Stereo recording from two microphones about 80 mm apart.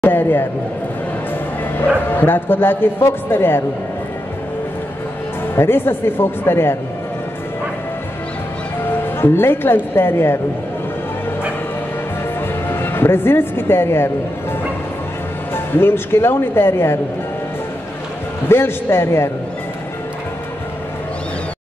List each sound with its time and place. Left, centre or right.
0.0 s a sound: left
2.0 s a man's voice: left
5.6 s a man's voice: left
9.2 s a man's voice: left
12.4 s a woman's voice: left
15.5 s a man's voice: left
18.5 s a man's voice: left